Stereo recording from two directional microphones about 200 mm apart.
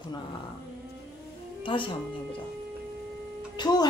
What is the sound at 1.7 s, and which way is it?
Speech, 25° left (ahead or behind).